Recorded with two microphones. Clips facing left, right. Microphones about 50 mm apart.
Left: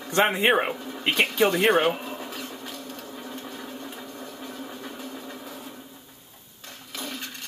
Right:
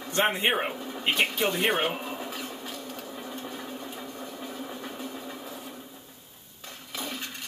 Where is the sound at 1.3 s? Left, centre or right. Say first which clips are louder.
Left 6 dB; left.